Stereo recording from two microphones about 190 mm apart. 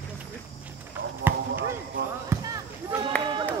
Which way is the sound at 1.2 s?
10° right (ahead or behind).